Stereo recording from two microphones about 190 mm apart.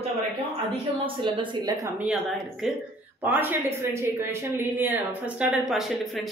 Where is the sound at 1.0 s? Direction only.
25° right (ahead or behind).